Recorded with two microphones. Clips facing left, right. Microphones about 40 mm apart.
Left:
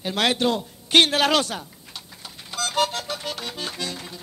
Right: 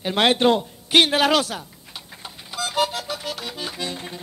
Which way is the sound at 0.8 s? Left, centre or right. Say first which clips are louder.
Right 1 dB; centre.